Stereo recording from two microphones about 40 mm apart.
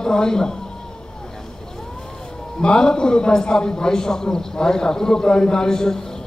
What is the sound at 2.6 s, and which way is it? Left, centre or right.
A man's voice, left.